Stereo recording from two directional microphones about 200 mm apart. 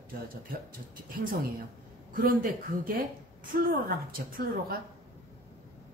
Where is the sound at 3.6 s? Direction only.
45° right (ahead or behind).